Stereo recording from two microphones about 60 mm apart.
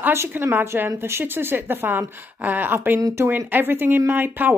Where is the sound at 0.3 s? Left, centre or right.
Right.